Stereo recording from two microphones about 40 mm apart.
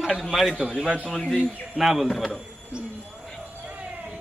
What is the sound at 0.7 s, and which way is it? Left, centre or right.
Speech, right.